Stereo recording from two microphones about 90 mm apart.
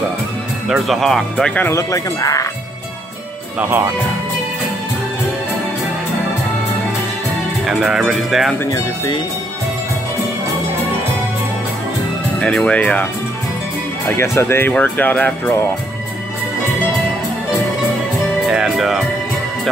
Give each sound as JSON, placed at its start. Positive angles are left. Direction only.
{"t": 0.7, "sound": "speech", "side_deg": -5}
{"t": 1.7, "sound": "speech", "side_deg": 35}
{"t": 3.5, "sound": "speech", "side_deg": -20}
{"t": 7.6, "sound": "speech", "side_deg": -5}
{"t": 8.6, "sound": "speech", "side_deg": 40}
{"t": 12.4, "sound": "speech", "side_deg": 10}
{"t": 14.0, "sound": "speech", "side_deg": 30}
{"t": 14.7, "sound": "speech", "side_deg": 20}
{"t": 18.5, "sound": "music", "side_deg": -5}